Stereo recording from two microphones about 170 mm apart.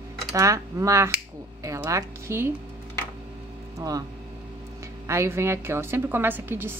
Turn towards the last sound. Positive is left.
turn(degrees=-15)  # may be behind; listen again after turning